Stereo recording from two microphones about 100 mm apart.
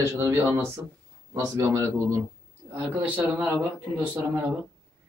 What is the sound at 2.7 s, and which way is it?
Speech, 20° right (ahead or behind).